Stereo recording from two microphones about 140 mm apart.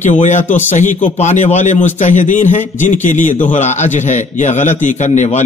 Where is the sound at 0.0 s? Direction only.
55° left (ahead or behind).